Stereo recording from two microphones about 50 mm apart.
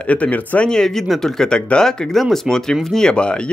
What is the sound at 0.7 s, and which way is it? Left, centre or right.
Speech, centre.